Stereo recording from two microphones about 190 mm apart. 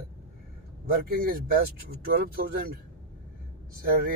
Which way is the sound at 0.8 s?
50° right (ahead or behind).